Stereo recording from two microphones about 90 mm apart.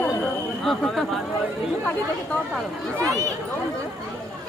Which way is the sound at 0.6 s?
Centre (ahead or behind).